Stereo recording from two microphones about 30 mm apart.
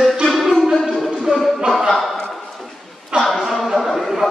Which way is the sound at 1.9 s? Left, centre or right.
Centre.